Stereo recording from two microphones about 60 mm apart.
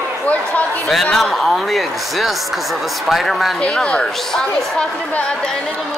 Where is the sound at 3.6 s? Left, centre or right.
Centre.